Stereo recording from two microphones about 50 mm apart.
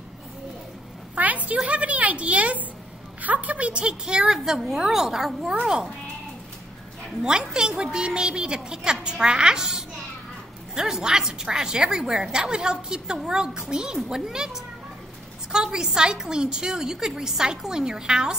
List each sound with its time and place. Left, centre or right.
1.1 s a sound: right
1.7 s a woman's voice: right; by 5.6 s centre
7.5 s a woman's voice: centre